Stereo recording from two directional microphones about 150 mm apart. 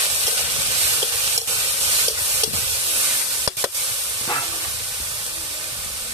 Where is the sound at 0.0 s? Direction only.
25° right (ahead or behind).